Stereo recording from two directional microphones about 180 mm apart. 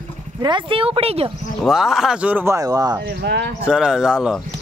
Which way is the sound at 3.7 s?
5° right (ahead or behind).